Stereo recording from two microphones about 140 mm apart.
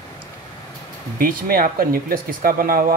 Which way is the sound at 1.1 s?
85° right.